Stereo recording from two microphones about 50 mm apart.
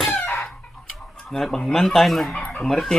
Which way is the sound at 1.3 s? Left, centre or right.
Centre.